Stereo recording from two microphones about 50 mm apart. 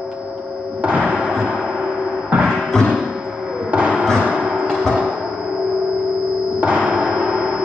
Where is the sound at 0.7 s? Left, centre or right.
Right.